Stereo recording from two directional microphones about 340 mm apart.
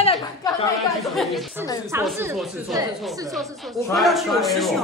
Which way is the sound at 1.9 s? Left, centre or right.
Centre.